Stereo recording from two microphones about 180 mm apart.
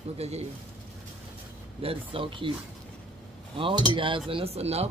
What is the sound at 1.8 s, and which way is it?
Speech, 30° right (ahead or behind).